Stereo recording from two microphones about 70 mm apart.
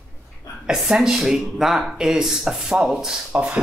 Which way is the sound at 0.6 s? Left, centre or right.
Centre.